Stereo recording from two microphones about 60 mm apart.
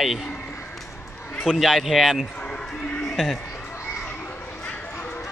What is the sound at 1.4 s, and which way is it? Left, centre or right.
Speech, centre.